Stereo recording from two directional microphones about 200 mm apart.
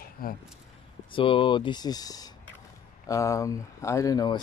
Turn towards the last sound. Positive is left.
turn(degrees=20)  # may be behind; listen again after turning